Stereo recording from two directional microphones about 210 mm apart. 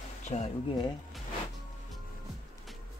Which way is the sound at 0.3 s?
25° left (ahead or behind).